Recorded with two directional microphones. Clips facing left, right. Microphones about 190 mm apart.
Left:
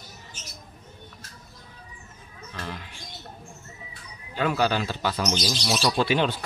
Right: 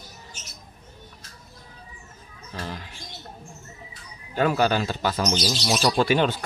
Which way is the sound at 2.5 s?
35° right (ahead or behind).